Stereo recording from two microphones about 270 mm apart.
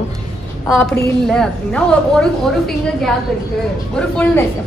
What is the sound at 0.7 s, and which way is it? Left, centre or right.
A woman's voice, centre.